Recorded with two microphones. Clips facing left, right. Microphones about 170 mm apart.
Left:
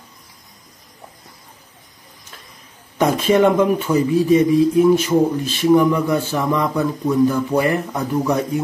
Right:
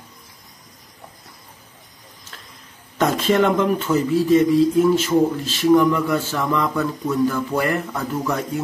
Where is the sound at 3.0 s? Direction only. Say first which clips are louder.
Left 3 dB; 15° left (ahead or behind).